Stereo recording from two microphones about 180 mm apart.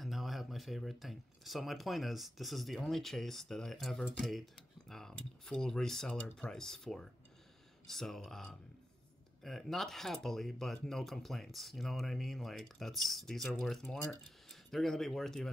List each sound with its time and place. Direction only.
0.0 s speech: centre (ahead or behind)